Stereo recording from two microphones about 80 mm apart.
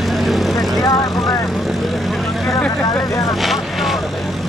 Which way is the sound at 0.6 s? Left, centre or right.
Left.